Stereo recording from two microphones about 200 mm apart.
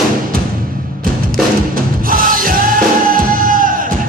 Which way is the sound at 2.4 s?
45° right (ahead or behind).